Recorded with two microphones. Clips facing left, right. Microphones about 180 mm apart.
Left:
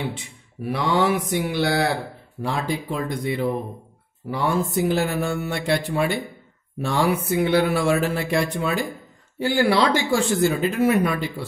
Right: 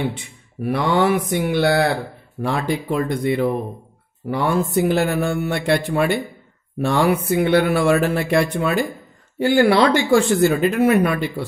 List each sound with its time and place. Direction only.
0.7 s speech: 55° right (ahead or behind)